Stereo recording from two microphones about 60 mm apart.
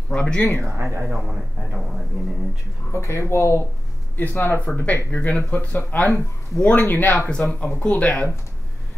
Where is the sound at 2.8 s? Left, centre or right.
Left.